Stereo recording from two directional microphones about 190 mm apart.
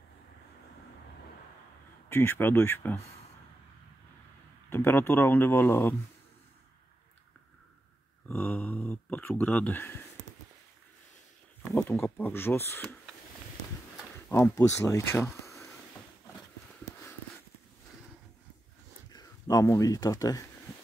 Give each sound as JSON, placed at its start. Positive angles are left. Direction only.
{"t": 2.0, "sound": "speech", "side_deg": 10}
{"t": 4.6, "sound": "speech", "side_deg": 10}
{"t": 8.3, "sound": "speech", "side_deg": 5}
{"t": 11.6, "sound": "speech", "side_deg": 10}
{"t": 14.5, "sound": "speech", "side_deg": 15}
{"t": 19.1, "sound": "speech", "side_deg": 20}